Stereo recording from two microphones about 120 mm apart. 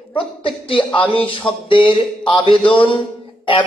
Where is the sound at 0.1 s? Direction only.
45° left (ahead or behind).